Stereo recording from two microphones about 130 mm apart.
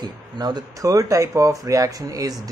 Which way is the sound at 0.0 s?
35° right (ahead or behind).